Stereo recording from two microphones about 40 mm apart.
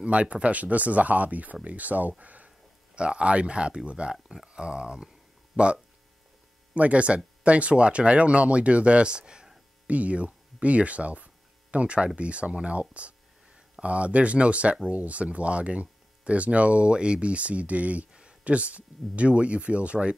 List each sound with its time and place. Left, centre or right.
0.0 s speech: right
3.0 s speech: right
9.8 s speech: right